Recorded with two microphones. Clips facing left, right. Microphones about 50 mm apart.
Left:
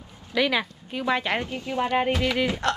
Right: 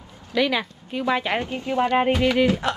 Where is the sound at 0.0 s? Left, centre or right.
Right.